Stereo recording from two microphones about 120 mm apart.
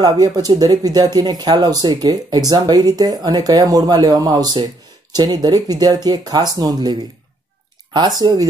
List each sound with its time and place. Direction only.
0.0 s speech: 35° right (ahead or behind)
8.2 s speech: 35° right (ahead or behind)